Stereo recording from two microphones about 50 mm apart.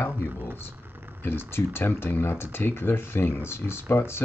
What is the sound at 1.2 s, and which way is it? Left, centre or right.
Speech, left.